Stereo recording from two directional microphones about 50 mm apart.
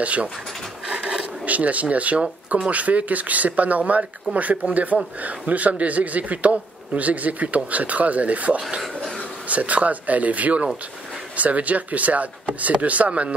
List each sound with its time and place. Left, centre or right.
0.0 s speech: right
0.8 s a sound: right
1.4 s speech: right